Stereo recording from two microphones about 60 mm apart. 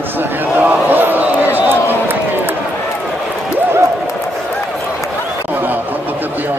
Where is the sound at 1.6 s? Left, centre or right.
Right.